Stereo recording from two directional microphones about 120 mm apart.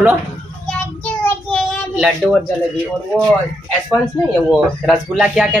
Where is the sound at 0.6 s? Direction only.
10° left (ahead or behind).